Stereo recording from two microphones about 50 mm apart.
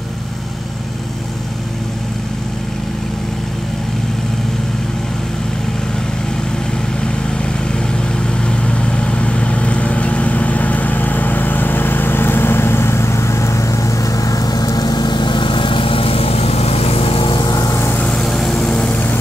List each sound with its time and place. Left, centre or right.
8.4 s vehicle: left
18.1 s vehicle: centre